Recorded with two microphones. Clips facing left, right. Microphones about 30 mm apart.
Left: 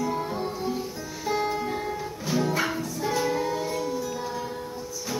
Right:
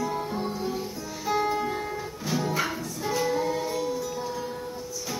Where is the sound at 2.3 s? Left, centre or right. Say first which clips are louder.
Left 2 dB; centre.